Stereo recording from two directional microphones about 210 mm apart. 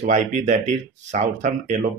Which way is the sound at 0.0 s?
35° right (ahead or behind).